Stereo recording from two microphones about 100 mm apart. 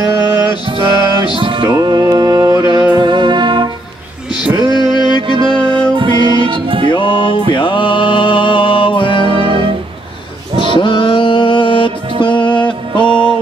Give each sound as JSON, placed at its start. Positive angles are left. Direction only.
{"t": 0.7, "sound": "music", "side_deg": -55}
{"t": 1.8, "sound": "music", "side_deg": -45}
{"t": 4.7, "sound": "music", "side_deg": 50}
{"t": 5.2, "sound": "music", "side_deg": -55}
{"t": 6.9, "sound": "music", "side_deg": 55}
{"t": 9.2, "sound": "music", "side_deg": -60}
{"t": 10.8, "sound": "mantra", "side_deg": 55}
{"t": 12.2, "sound": "music", "side_deg": 55}